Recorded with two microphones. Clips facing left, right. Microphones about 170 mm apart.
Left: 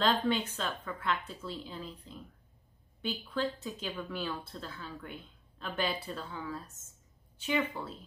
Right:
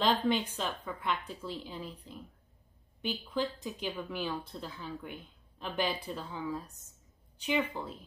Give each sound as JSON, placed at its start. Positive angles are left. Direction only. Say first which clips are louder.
{"t": 0.3, "sound": "speech", "louder": "right 1 dB", "side_deg": -15}